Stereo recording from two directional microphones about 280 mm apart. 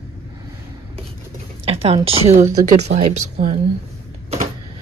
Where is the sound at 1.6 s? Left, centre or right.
Centre.